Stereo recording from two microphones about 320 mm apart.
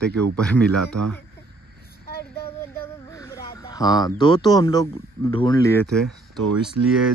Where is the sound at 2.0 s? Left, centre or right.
Left.